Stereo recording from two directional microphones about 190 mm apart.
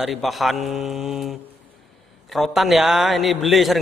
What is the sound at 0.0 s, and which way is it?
A man's voice, centre (ahead or behind).